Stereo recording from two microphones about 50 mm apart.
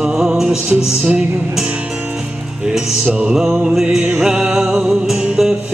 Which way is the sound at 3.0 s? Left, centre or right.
Right.